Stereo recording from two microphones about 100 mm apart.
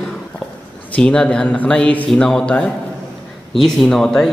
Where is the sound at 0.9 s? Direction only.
10° left (ahead or behind).